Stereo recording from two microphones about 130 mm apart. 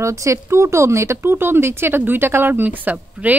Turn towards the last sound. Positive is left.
turn(degrees=-15)  # may be behind; listen again after turning